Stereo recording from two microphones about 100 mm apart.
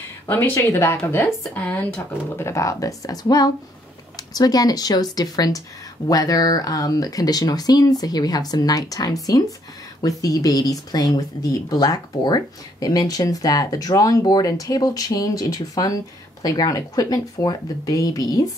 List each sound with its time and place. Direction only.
0.3 s speech: 25° left (ahead or behind)